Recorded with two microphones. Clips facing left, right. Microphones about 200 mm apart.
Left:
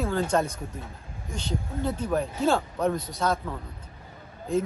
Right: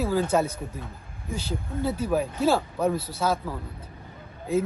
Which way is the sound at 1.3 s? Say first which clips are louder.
Right 1 dB; 5° right (ahead or behind).